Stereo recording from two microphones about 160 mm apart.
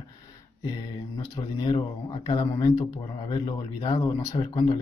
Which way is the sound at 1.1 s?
30° left (ahead or behind).